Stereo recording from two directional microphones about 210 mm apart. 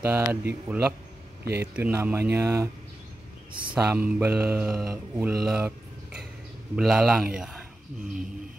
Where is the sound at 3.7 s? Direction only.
5° right (ahead or behind).